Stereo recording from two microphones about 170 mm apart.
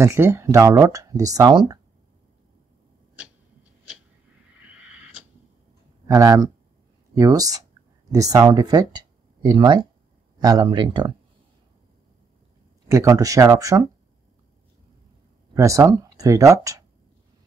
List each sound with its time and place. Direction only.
0.0 s speech: 15° right (ahead or behind)
6.0 s speech: 20° right (ahead or behind)
12.8 s speech: 20° right (ahead or behind)
15.5 s speech: 20° right (ahead or behind)